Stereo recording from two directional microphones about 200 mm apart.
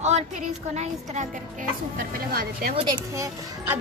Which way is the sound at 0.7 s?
35° right (ahead or behind).